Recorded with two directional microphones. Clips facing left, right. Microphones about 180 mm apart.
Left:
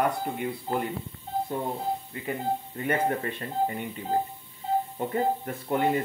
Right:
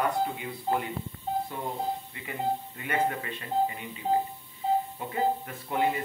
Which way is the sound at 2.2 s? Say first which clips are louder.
Left 1 dB; 40° left (ahead or behind).